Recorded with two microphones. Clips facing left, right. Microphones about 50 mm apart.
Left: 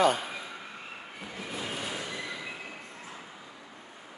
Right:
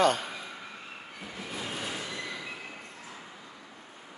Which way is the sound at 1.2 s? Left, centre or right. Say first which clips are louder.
Left 1 dB; centre.